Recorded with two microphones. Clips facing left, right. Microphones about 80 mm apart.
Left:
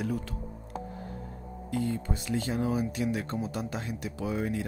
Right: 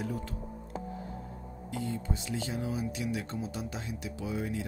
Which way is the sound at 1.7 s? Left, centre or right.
Left.